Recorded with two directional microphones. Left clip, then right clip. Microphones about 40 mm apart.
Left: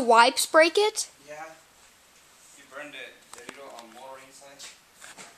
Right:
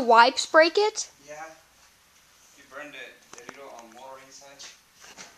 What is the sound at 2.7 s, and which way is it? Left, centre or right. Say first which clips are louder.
Speech: even; centre.